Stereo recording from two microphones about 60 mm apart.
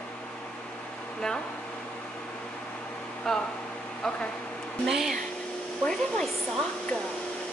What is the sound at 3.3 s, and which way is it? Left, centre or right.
Speech, centre.